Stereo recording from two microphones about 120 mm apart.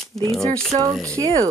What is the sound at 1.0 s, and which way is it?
Speech, 25° right (ahead or behind).